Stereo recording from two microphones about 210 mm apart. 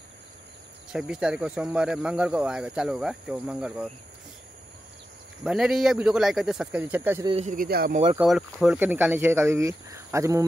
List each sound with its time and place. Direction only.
0.9 s speech: 5° right (ahead or behind)
5.4 s speech: 5° right (ahead or behind)
7.2 s speech: 30° right (ahead or behind)
7.5 s speech: 45° right (ahead or behind)
8.2 s speech: centre (ahead or behind)